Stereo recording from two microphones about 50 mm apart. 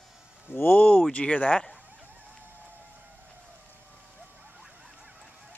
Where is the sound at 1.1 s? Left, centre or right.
Left.